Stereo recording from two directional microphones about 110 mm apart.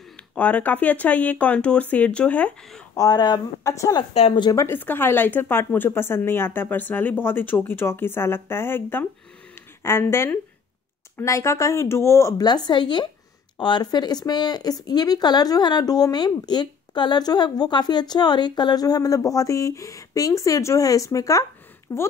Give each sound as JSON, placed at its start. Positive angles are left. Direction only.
{"t": 0.3, "sound": "speech", "side_deg": 15}
{"t": 2.9, "sound": "speech", "side_deg": 35}
{"t": 3.6, "sound": "speech", "side_deg": 30}
{"t": 4.1, "sound": "speech", "side_deg": 70}
{"t": 4.4, "sound": "speech", "side_deg": 35}
{"t": 4.6, "sound": "speech", "side_deg": 20}
{"t": 12.4, "sound": "a woman's voice", "side_deg": 40}